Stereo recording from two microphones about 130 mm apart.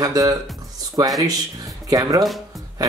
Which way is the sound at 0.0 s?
30° right (ahead or behind).